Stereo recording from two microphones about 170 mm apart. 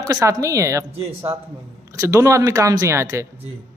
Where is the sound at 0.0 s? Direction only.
20° right (ahead or behind).